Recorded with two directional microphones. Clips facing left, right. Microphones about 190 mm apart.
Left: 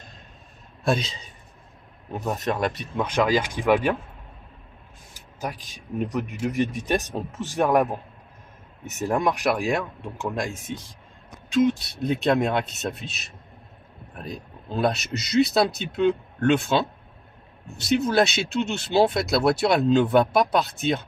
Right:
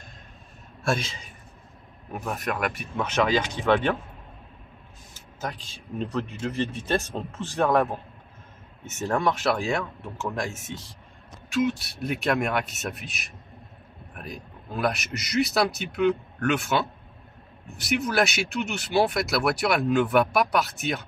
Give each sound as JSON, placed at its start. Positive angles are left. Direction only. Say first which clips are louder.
{"t": 2.2, "sound": "speech", "louder": "left 4 dB", "side_deg": 25}
{"t": 3.0, "sound": "speech", "louder": "left 2 dB", "side_deg": 10}
{"t": 5.4, "sound": "speech", "louder": "left 2 dB", "side_deg": 10}
{"t": 9.0, "sound": "speech", "louder": "left 1 dB", "side_deg": 15}